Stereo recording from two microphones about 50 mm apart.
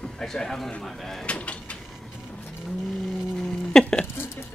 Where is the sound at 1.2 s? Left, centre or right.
Left.